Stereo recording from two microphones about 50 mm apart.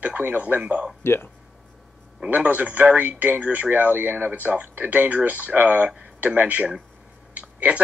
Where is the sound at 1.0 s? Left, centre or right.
Left.